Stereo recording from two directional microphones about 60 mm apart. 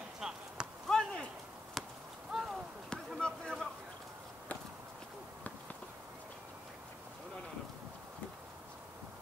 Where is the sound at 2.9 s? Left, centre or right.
Centre.